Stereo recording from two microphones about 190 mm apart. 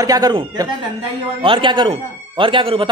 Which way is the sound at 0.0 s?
20° right (ahead or behind).